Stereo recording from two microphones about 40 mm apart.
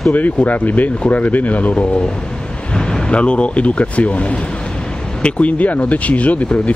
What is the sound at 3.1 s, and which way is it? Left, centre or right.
Speech, left.